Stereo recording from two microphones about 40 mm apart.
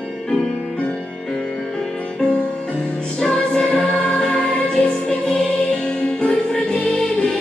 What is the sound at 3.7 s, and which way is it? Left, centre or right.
Music, left.